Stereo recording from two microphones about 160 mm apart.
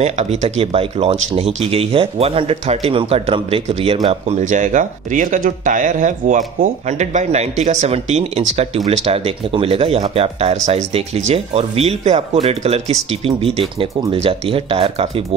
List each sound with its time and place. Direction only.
0.0 s speech: 40° right (ahead or behind)